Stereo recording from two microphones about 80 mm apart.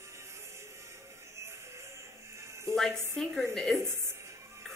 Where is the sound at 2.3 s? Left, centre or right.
Right.